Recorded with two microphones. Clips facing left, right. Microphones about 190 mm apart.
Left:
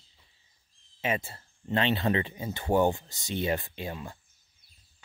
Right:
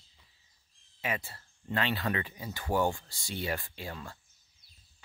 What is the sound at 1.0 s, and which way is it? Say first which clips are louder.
Speech: left 5 dB; 25° left (ahead or behind).